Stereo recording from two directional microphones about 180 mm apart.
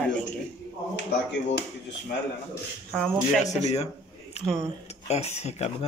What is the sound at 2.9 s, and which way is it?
Speech, 5° left (ahead or behind).